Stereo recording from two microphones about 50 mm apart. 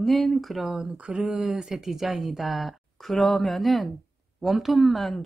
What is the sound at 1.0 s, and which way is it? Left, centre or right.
Speech, right.